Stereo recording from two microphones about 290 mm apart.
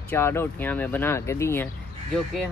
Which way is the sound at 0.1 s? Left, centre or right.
Centre.